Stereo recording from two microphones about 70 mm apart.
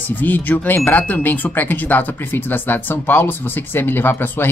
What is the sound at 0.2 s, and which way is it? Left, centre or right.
Speech, left.